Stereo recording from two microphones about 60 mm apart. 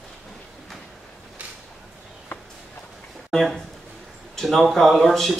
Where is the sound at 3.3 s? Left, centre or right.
Centre.